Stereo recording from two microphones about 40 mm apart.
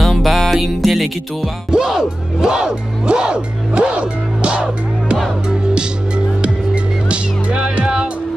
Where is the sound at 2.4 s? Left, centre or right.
Centre.